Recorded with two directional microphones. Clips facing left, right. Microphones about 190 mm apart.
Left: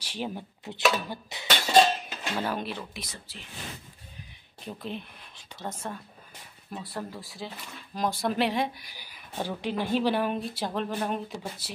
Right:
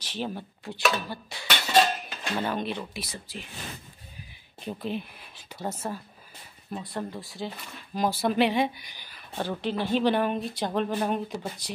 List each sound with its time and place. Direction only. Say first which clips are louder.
0.0 s speech: right 1 dB; 10° left (ahead or behind)
1.1 s dishes: even; 20° left (ahead or behind)
1.7 s cutlery: left 2 dB; 25° left (ahead or behind)
2.3 s speech: right 2 dB; 5° left (ahead or behind); by 3.4 s 10° right (ahead or behind)
4.6 s speech: right 4 dB; 5° right (ahead or behind)